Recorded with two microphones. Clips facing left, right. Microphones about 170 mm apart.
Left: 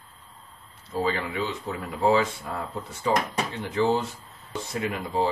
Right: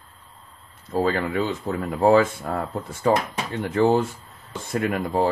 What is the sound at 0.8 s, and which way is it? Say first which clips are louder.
Speech: right 5 dB; 50° right (ahead or behind).